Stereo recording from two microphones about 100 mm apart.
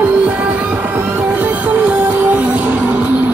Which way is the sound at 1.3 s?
15° right (ahead or behind).